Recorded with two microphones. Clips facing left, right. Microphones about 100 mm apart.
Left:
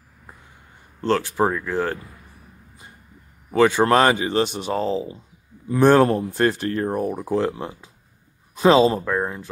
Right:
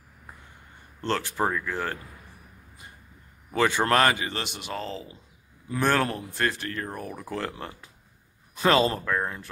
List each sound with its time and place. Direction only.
1.0 s speech: 20° left (ahead or behind)
3.5 s speech: 20° left (ahead or behind)
4.5 s speech: 40° left (ahead or behind)
5.7 s speech: 25° left (ahead or behind)